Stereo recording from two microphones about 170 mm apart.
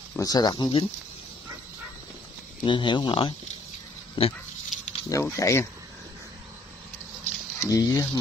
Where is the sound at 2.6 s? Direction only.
30° left (ahead or behind).